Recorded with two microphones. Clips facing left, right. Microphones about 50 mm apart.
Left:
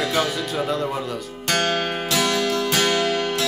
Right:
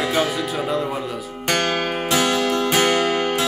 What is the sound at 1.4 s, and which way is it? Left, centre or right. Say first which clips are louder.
Music: right 1 dB; right.